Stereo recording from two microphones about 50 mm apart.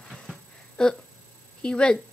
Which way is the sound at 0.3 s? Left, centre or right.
Right.